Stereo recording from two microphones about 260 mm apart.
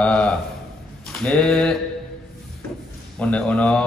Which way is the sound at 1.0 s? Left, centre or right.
Centre.